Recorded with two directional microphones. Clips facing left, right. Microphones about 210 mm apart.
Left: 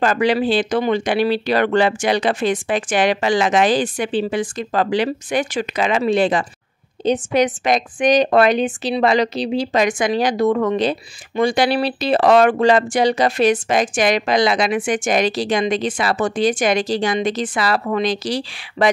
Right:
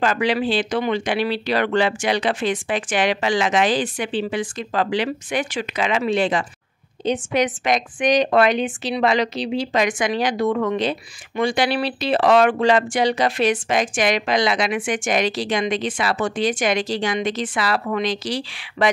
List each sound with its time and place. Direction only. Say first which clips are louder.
0.0 s a woman's voice: left 3 dB; 40° left (ahead or behind)